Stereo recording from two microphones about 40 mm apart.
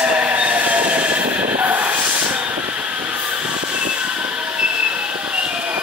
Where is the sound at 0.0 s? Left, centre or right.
Right.